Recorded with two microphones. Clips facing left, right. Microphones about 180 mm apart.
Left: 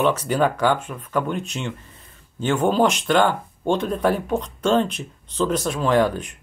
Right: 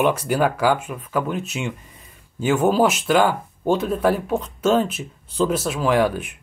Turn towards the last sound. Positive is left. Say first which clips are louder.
# even
turn(degrees=-5)  # may be behind; listen again after turning